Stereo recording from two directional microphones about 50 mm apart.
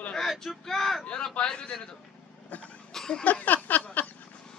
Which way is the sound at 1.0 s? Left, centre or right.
Left.